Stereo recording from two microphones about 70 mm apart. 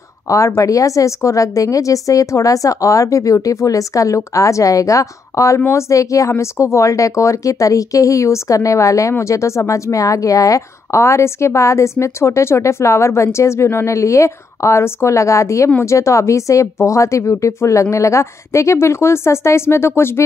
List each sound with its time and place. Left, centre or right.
0.6 s a woman's voice: left